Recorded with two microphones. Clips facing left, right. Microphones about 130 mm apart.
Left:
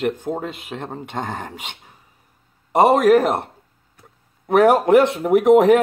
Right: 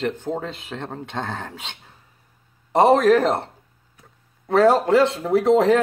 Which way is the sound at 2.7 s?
10° left (ahead or behind).